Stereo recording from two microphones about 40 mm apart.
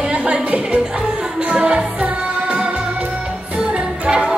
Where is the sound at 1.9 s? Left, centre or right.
Right.